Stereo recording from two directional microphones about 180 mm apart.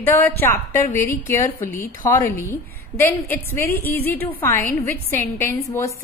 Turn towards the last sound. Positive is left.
turn(degrees=15)  # may be behind; listen again after turning